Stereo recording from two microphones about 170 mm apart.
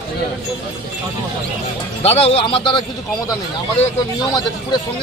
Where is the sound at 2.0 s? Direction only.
35° left (ahead or behind).